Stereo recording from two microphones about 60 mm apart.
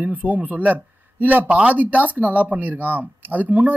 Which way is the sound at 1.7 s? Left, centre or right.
Right.